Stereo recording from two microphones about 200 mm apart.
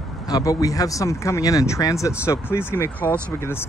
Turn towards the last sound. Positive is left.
turn(degrees=10)  # may be behind; listen again after turning